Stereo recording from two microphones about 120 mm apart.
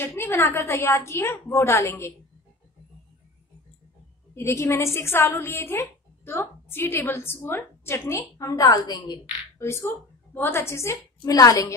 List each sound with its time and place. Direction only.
0.0 s a woman's voice: 20° left (ahead or behind)
4.4 s a woman's voice: 20° left (ahead or behind)
9.6 s a woman's voice: 25° left (ahead or behind)